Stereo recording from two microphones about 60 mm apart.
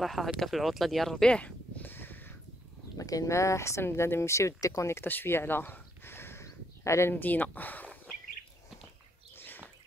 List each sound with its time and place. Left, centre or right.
0.0 s speech: centre
1.2 s speech: centre
1.8 s a sound: left
3.0 s speech: left
4.9 s speech: left
6.4 s a sound: left
7.1 s speech: left